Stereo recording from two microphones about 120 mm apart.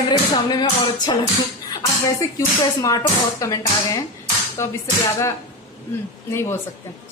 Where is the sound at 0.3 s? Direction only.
35° left (ahead or behind).